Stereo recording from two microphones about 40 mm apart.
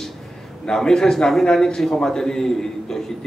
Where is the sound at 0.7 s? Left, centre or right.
Centre.